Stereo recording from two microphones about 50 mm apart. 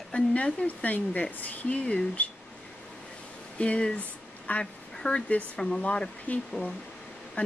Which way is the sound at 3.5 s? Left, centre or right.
Left.